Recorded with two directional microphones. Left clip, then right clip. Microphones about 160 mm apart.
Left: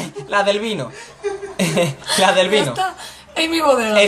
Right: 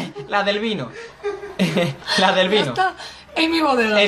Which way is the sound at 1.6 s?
15° left (ahead or behind).